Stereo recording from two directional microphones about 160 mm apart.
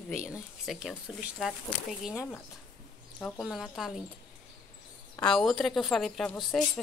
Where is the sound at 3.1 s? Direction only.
10° left (ahead or behind).